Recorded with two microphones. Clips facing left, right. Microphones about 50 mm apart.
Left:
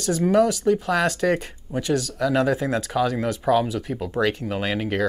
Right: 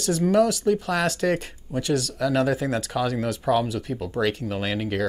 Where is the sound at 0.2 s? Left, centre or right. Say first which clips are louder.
Left 1 dB; centre.